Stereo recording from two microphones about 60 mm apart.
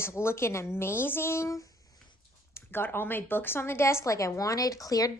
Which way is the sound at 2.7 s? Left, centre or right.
Left.